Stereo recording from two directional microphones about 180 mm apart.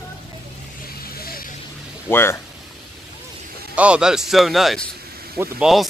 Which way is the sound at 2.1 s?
10° left (ahead or behind).